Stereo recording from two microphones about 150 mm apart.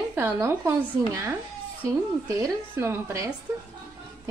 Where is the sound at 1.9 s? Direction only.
20° right (ahead or behind).